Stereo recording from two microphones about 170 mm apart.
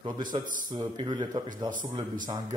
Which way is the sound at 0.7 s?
25° right (ahead or behind).